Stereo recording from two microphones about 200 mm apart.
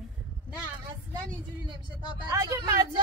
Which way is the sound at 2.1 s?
20° right (ahead or behind).